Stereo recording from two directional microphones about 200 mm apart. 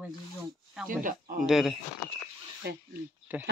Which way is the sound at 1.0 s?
40° right (ahead or behind).